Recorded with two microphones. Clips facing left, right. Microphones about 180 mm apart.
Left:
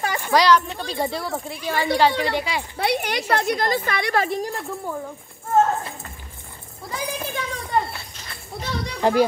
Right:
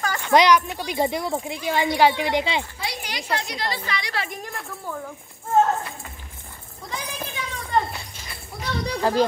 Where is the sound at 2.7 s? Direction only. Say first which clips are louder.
Left 9 dB; 60° left (ahead or behind).